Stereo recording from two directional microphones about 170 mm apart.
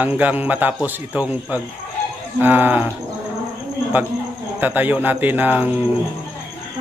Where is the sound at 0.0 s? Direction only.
10° right (ahead or behind).